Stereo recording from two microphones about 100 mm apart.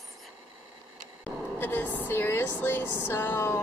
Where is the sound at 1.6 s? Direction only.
20° left (ahead or behind).